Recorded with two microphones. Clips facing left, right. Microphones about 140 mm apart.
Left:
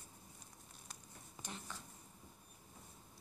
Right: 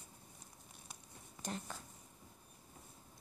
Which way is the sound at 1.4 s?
45° right (ahead or behind).